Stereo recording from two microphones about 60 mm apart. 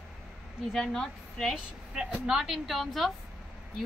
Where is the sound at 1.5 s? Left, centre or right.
Centre.